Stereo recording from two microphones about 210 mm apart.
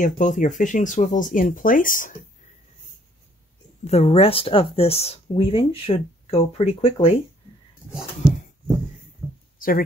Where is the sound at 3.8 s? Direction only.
30° left (ahead or behind).